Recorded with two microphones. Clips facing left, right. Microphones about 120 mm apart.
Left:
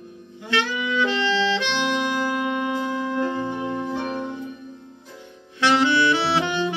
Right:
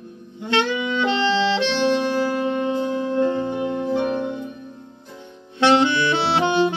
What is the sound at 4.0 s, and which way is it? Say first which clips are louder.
Music: right 5 dB; 35° right (ahead or behind).